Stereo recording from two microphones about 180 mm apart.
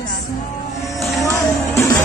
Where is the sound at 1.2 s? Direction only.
15° left (ahead or behind).